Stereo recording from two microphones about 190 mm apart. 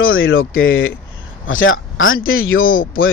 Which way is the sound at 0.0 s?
90° left.